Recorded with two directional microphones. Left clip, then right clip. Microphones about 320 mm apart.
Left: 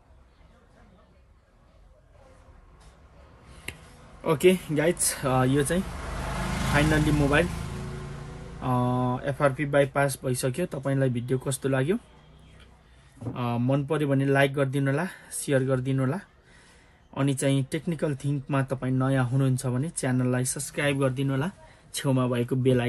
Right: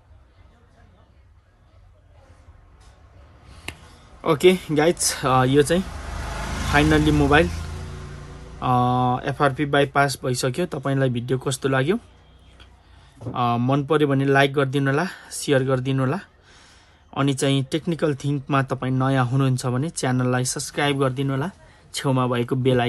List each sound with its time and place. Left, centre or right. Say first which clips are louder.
3.7 s a sound: right 4 dB; centre
4.2 s speech: right 5 dB; centre
8.5 s speech: right 8 dB; centre
13.3 s speech: right 7 dB; centre